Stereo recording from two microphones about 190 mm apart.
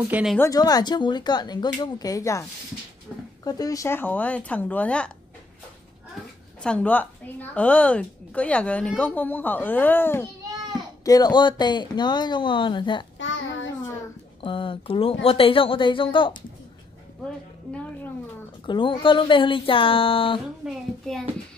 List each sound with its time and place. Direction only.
0.1 s speech: 5° right (ahead or behind)
0.4 s speech: 20° left (ahead or behind)
3.1 s dog: 10° left (ahead or behind)
3.4 s a woman's voice: 20° left (ahead or behind)
6.6 s a woman's voice: 5° left (ahead or behind); by 13.0 s 25° left (ahead or behind)
13.2 s child singing: 80° left
14.4 s speech: 25° left (ahead or behind)
18.7 s speech: 25° left (ahead or behind)
20.6 s speech: centre (ahead or behind)